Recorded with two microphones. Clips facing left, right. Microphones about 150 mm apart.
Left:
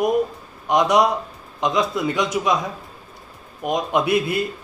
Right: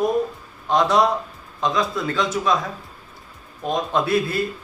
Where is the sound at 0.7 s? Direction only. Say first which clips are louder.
Left 1 dB; 15° left (ahead or behind).